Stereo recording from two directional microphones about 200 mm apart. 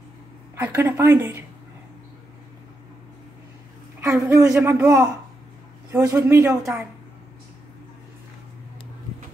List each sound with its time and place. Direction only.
0.6 s a woman's voice: 10° right (ahead or behind)
4.0 s a woman's voice: 15° right (ahead or behind)